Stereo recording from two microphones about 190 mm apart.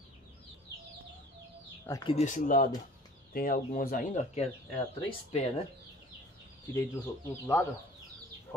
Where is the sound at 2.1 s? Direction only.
40° left (ahead or behind).